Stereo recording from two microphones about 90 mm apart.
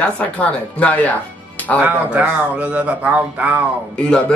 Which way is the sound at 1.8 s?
15° right (ahead or behind).